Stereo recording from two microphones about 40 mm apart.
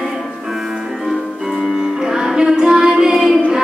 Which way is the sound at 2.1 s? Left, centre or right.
Centre.